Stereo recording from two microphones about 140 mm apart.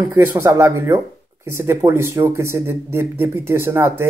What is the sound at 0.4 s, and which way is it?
Speech, 20° right (ahead or behind).